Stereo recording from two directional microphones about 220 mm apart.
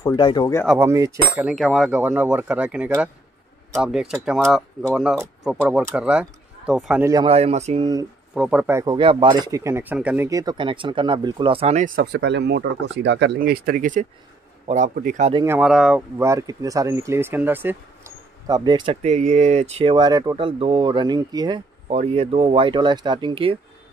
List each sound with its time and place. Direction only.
0.0 s speech: 20° left (ahead or behind)
0.7 s speech: 15° right (ahead or behind)
7.1 s speech: 20° right (ahead or behind)
8.4 s speech: 5° right (ahead or behind)
8.9 s speech: 25° right (ahead or behind)
15.3 s speech: 10° right (ahead or behind)
21.8 s speech: 30° right (ahead or behind)